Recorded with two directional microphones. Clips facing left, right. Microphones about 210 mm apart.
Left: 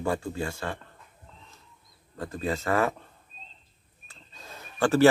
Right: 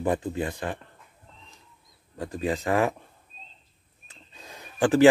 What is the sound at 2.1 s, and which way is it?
Speech, 15° right (ahead or behind).